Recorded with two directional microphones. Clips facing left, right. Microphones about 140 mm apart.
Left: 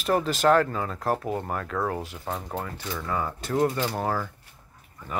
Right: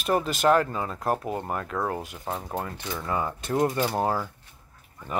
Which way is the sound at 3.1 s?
25° right (ahead or behind).